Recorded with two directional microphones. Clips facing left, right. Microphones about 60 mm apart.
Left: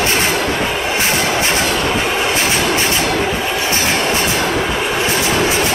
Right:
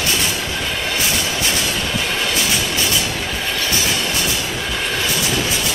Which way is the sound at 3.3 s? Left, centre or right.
Centre.